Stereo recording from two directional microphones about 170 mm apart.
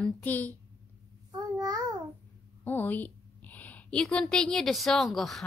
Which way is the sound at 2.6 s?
10° left (ahead or behind).